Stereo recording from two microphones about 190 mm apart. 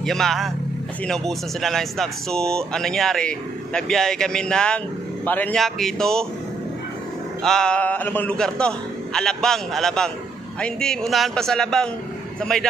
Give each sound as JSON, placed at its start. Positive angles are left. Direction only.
{"t": 0.0, "sound": "speech", "side_deg": 0}
{"t": 7.4, "sound": "speech", "side_deg": 5}